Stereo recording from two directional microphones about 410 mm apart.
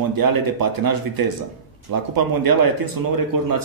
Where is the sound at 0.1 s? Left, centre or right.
Right.